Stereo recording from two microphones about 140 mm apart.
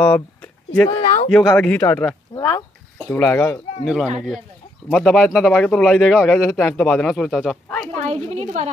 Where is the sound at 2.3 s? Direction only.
25° left (ahead or behind).